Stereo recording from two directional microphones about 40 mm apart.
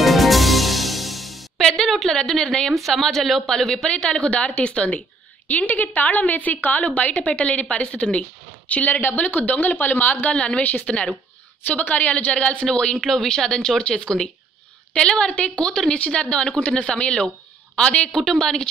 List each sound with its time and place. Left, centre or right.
0.0 s music: centre
1.7 s a woman's voice: centre
2.7 s a woman's voice: centre; by 9.0 s left
9.0 s a woman's voice: left
10.3 s a woman's voice: left
10.6 s a woman's voice: left
12.6 s a woman's voice: left
18.1 s speech: centre